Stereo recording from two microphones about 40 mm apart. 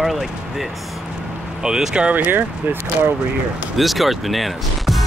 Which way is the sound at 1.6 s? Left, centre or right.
Centre.